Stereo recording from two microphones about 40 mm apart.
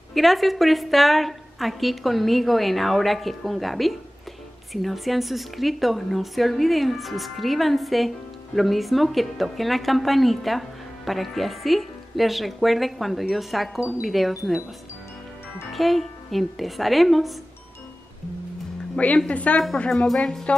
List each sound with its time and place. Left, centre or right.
0.1 s a woman's voice: centre
15.7 s a woman's voice: centre
19.1 s a woman's voice: left